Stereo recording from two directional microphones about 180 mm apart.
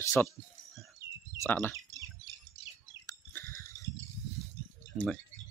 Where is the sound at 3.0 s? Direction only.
15° left (ahead or behind).